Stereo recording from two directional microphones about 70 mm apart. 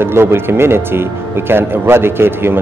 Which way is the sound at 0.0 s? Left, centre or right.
Right.